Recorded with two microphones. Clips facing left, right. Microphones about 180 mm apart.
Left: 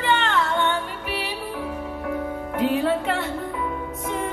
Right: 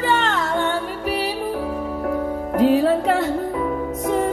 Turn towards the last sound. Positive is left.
turn(degrees=-40)  # may be behind; listen again after turning